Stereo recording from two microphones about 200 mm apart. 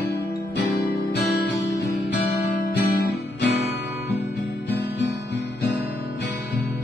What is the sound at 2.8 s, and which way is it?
Music, 50° left (ahead or behind).